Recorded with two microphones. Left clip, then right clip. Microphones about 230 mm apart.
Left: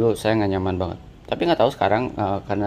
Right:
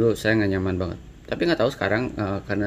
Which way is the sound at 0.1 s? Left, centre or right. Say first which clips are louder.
Left 1 dB; centre.